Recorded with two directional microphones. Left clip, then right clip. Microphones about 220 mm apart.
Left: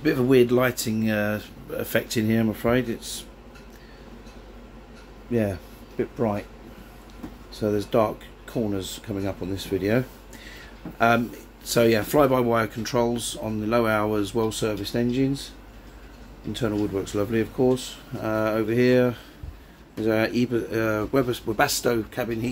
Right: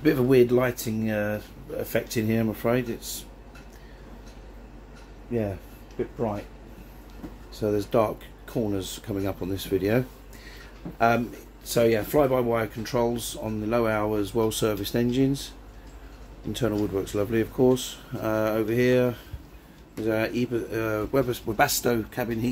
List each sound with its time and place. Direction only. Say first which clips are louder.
0.0 s speech: left 1 dB; centre (ahead or behind)
6.1 s speech: left 4 dB; 25° left (ahead or behind)
7.5 s speech: left 1 dB; 5° left (ahead or behind)
16.5 s speech: even; centre (ahead or behind)